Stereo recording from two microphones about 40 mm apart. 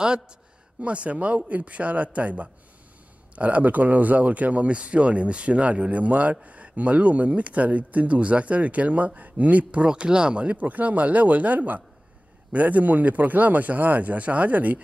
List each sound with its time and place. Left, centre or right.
0.7 s speech: right
9.8 s speech: right